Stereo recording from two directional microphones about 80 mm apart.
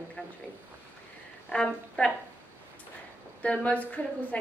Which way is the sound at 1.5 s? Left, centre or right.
Centre.